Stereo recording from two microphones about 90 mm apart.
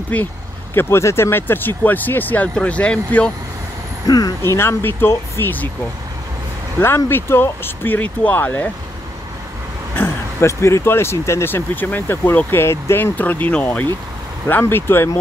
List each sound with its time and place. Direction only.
0.1 s speech: 15° left (ahead or behind)
0.7 s speech: 30° left (ahead or behind)
4.4 s speech: 30° left (ahead or behind)
7.1 s speech: 25° left (ahead or behind)
9.9 s speech: 30° left (ahead or behind)